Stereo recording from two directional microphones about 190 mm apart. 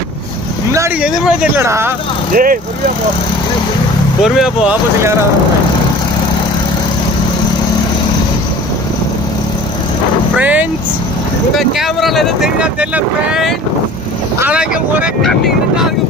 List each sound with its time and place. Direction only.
0.7 s speech: 5° right (ahead or behind)
2.3 s speech: 45° right (ahead or behind)
4.2 s speech: centre (ahead or behind)
10.3 s speech: 10° right (ahead or behind)